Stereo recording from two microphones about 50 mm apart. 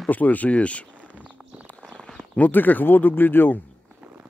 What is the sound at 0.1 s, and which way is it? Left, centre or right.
Speech, left.